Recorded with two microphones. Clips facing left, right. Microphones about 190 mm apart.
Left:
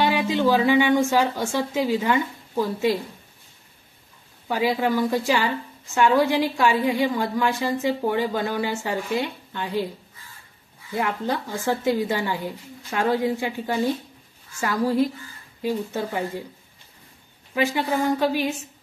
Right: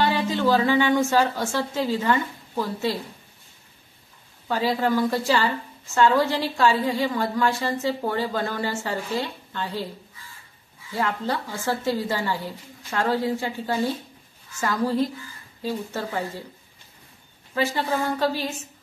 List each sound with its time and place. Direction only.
0.0 s a woman's voice: 15° left (ahead or behind)
4.5 s a woman's voice: 10° left (ahead or behind)
10.9 s a woman's voice: 15° left (ahead or behind)
17.6 s a woman's voice: 15° left (ahead or behind)